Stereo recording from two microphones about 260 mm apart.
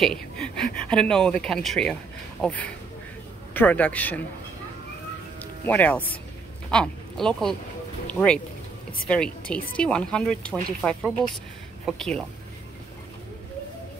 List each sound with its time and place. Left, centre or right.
0.0 s speech: centre
5.7 s speech: centre